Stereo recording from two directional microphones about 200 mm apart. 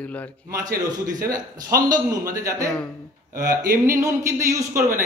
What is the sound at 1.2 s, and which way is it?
Speech, 15° right (ahead or behind).